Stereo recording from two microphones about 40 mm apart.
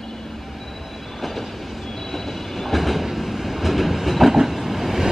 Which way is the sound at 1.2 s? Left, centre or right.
Centre.